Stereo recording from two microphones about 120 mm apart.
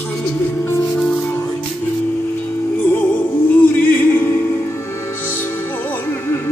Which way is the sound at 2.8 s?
15° left (ahead or behind).